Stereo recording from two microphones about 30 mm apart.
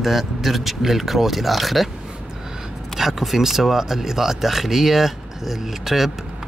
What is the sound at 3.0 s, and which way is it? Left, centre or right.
Speech, centre.